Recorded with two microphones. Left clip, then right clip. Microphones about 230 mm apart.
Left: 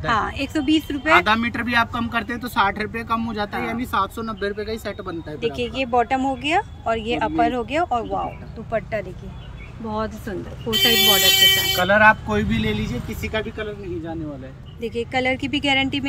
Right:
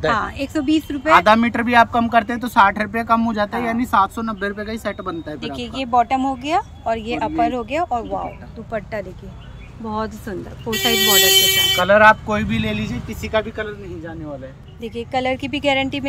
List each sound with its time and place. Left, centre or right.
0.1 s speech: centre
1.2 s speech: centre
5.4 s speech: centre
9.8 s speech: centre
14.8 s speech: centre